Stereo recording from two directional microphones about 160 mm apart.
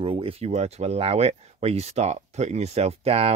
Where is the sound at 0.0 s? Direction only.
35° right (ahead or behind).